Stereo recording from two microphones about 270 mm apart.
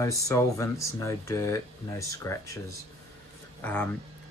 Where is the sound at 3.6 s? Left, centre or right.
Centre.